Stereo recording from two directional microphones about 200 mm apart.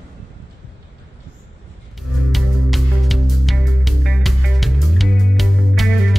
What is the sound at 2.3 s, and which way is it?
Music, centre (ahead or behind).